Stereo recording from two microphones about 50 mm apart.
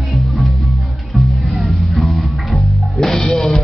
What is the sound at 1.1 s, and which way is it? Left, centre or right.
Music, centre.